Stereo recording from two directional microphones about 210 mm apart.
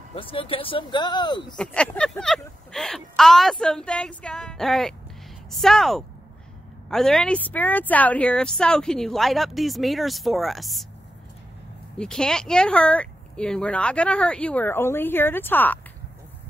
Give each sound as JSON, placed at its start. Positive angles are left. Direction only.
{"t": 0.1, "sound": "speech", "side_deg": 25}
{"t": 1.6, "sound": "speech", "side_deg": 5}
{"t": 12.0, "sound": "speech", "side_deg": 5}